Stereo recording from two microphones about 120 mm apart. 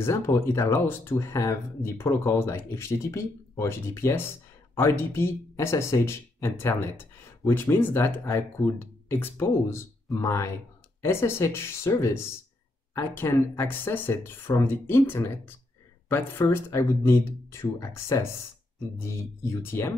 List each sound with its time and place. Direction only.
0.0 s speech: 25° left (ahead or behind)
19.6 s speech: 20° left (ahead or behind)